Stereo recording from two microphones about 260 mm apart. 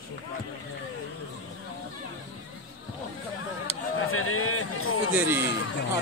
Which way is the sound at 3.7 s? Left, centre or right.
Left.